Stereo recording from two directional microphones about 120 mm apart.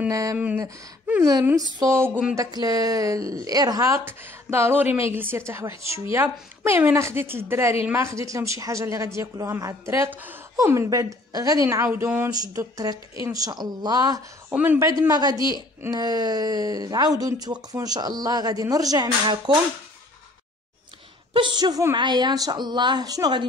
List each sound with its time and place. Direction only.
0.1 s speech: 30° right (ahead or behind)
1.7 s speech: 30° right (ahead or behind)
12.3 s speech: 30° right (ahead or behind)
14.5 s a man's voice: 15° right (ahead or behind)
14.9 s speech: 30° right (ahead or behind)
21.3 s speech: 40° right (ahead or behind)